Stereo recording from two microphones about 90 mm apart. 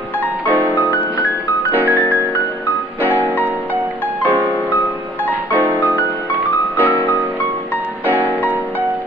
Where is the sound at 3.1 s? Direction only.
25° right (ahead or behind).